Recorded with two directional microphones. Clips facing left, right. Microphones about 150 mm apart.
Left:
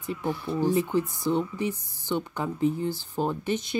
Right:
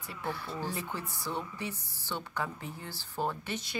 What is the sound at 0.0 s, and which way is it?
Speech, 20° left (ahead or behind).